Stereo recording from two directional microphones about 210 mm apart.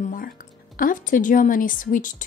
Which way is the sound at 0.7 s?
40° left (ahead or behind).